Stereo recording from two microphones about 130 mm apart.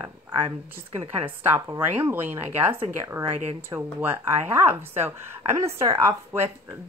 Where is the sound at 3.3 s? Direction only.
55° right (ahead or behind).